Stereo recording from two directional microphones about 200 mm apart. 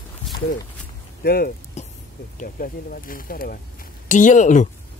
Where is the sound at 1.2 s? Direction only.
50° left (ahead or behind).